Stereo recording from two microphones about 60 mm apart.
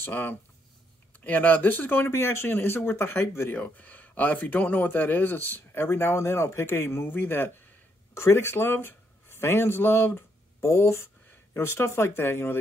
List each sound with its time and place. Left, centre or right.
0.0 s speech: left
2.0 s speech: left
3.5 s speech: left
6.1 s speech: left
8.1 s speech: left